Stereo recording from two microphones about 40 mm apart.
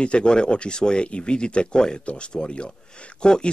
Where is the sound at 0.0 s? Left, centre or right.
Left.